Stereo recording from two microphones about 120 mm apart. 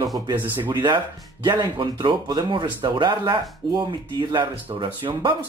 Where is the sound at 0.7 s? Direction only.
40° right (ahead or behind).